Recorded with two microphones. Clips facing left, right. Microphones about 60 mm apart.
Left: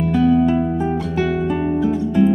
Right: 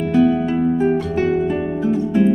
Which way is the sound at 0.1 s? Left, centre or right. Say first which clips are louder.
Left 1 dB; centre.